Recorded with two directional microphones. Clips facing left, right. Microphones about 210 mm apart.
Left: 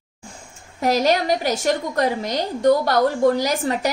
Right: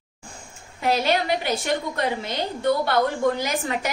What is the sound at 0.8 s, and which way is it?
A woman's voice, 40° left (ahead or behind).